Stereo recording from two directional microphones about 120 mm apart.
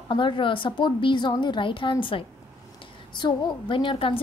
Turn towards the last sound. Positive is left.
turn(degrees=50)  # may be behind; listen again after turning